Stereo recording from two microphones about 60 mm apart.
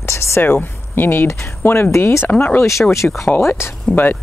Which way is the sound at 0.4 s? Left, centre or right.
Left.